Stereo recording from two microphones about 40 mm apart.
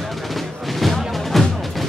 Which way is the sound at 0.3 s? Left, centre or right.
Centre.